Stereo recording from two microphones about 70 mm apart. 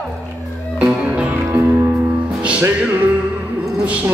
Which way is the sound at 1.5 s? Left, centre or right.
Right.